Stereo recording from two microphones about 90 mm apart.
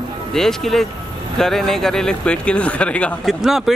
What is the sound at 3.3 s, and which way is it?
Speech, 5° right (ahead or behind).